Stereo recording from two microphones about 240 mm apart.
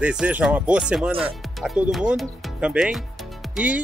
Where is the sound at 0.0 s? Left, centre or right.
Centre.